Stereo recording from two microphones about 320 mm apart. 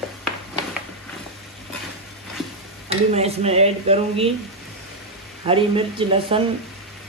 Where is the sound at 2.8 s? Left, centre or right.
Centre.